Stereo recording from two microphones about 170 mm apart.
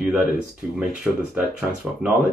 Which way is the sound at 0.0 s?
Centre (ahead or behind).